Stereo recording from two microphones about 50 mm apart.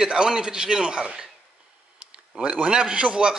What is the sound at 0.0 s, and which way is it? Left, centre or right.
A man's voice, centre.